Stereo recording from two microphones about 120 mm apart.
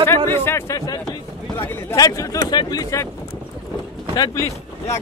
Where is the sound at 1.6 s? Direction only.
20° left (ahead or behind).